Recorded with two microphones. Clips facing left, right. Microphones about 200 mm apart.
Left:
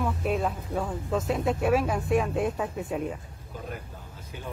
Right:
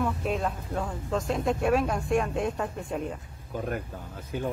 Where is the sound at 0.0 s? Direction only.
Centre (ahead or behind).